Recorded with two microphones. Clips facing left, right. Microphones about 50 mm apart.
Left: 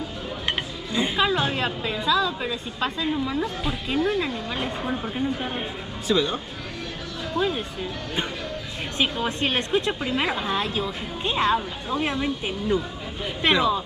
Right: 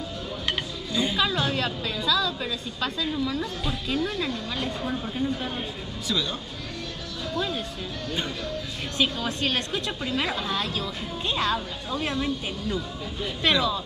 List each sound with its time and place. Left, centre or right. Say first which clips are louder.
0.5 s speech: left 1 dB; left
8.9 s speech: left 2 dB; left